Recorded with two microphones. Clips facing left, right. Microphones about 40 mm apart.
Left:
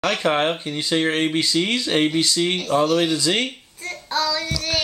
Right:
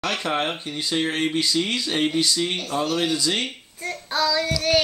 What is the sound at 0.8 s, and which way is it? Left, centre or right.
Speech, left.